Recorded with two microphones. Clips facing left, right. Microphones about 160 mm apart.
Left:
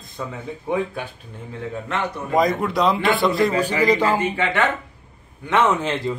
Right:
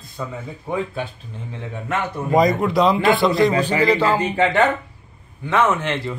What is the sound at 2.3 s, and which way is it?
A man's voice, centre (ahead or behind).